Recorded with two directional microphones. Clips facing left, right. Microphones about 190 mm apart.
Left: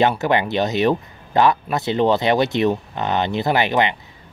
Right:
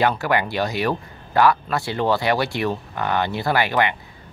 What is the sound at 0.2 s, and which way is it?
Speech, 20° left (ahead or behind).